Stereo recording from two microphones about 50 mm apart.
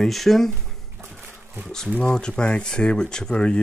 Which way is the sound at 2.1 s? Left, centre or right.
Centre.